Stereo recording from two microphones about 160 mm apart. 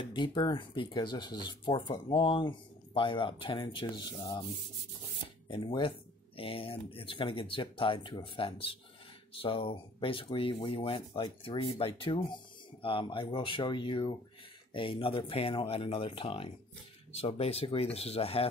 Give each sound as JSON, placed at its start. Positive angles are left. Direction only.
{"t": 0.0, "sound": "speech", "side_deg": 30}
{"t": 5.5, "sound": "speech", "side_deg": 35}